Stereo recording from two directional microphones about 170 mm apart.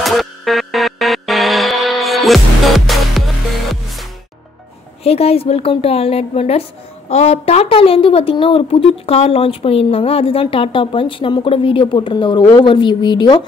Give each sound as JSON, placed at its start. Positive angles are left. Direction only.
{"t": 0.0, "sound": "music", "side_deg": 0}
{"t": 5.0, "sound": "a woman's voice", "side_deg": 35}